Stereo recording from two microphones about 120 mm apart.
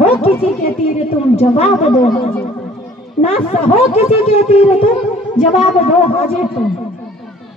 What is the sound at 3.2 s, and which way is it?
Speech, 60° left (ahead or behind).